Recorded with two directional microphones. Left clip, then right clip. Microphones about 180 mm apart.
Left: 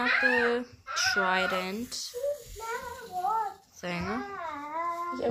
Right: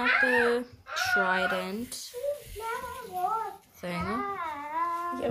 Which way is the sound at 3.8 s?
10° left (ahead or behind).